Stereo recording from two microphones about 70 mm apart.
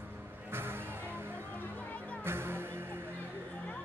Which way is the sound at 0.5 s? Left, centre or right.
Right.